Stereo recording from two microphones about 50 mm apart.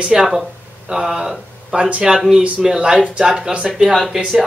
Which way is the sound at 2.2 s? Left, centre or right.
Centre.